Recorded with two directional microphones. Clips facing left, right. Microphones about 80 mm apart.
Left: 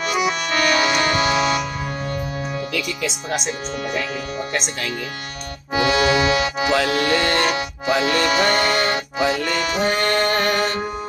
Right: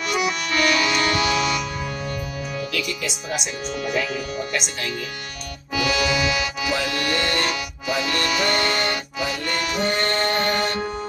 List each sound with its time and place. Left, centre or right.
0.0 s accordion: left
5.8 s music: left
6.7 s music: left
8.3 s music: left
8.5 s music: left